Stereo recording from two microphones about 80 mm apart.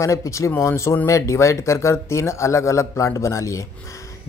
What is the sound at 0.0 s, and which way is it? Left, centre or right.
Speech, left.